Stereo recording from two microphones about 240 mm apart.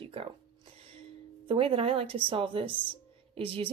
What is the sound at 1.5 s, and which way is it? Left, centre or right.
Speech, right.